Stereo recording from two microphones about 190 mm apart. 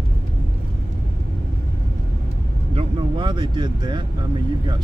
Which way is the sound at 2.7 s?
25° right (ahead or behind).